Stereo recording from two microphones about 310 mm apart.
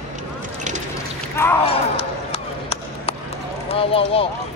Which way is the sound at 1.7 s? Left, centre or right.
Centre.